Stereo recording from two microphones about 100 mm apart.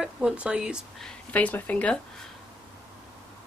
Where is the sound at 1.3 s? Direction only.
15° left (ahead or behind).